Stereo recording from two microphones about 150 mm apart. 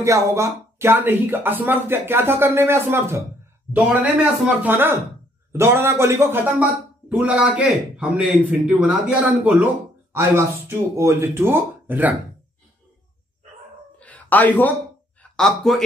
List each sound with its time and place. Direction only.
0.0 s speech: 20° right (ahead or behind)
13.9 s a sound: 10° left (ahead or behind)
15.3 s speech: 5° left (ahead or behind)